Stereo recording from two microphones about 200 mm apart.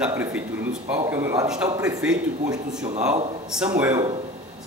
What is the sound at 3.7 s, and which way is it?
Speech, 15° right (ahead or behind).